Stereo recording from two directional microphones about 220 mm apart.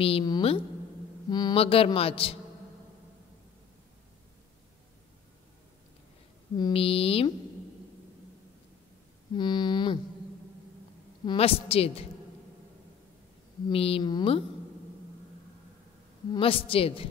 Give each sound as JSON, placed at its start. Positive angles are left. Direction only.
{"t": 0.0, "sound": "speech", "side_deg": 20}
{"t": 6.6, "sound": "speech", "side_deg": 25}
{"t": 9.3, "sound": "speech", "side_deg": 20}
{"t": 11.2, "sound": "speech", "side_deg": 25}
{"t": 13.7, "sound": "speech", "side_deg": 25}
{"t": 16.3, "sound": "speech", "side_deg": 25}